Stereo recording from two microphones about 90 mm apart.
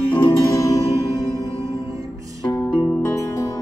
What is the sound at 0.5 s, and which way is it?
Music, 35° left (ahead or behind).